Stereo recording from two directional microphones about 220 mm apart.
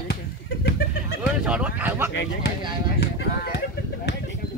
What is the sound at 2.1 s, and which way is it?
Speech, 55° left (ahead or behind).